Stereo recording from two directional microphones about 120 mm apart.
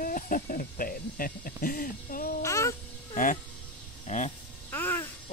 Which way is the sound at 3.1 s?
90° left.